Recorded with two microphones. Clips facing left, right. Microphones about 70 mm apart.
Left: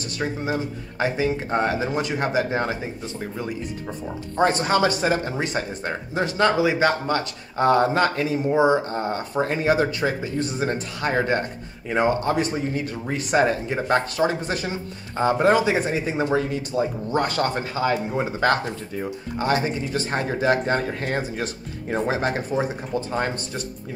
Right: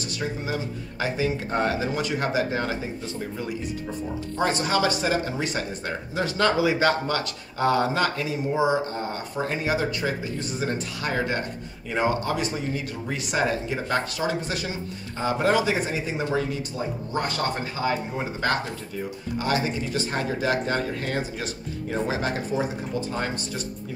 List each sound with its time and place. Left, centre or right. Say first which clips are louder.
0.2 s speech: left 4 dB; left
4.4 s speech: left 4 dB; left
5.9 s speech: left 2 dB; left
8.5 s speech: left 4 dB; left
18.7 s speech: left 3 dB; left